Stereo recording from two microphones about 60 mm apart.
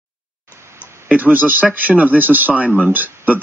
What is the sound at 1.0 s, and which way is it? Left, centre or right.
Speech, right.